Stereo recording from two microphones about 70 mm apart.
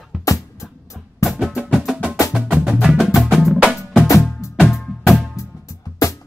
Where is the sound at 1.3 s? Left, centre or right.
Centre.